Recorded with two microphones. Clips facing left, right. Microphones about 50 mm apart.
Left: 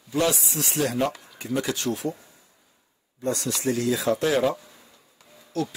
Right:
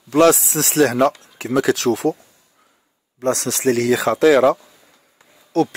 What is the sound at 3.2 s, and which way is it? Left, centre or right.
Speech, right.